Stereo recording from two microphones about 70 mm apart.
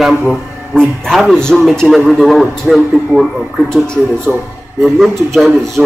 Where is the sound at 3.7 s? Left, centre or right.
Centre.